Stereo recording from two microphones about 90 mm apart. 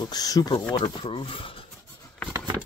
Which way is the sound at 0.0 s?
45° left (ahead or behind).